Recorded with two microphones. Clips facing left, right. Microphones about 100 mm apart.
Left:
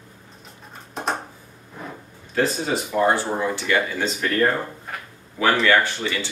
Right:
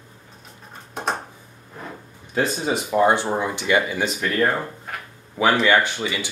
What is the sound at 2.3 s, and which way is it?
Speech, 15° right (ahead or behind).